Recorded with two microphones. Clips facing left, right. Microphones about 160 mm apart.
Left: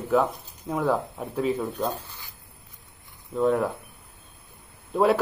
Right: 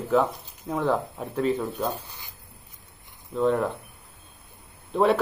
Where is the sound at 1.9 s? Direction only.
15° right (ahead or behind).